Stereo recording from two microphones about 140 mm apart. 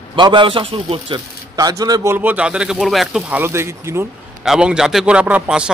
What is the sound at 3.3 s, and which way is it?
Speech, 15° right (ahead or behind).